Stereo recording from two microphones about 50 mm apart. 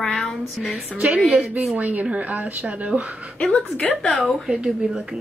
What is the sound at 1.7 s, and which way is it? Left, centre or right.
Speech, right.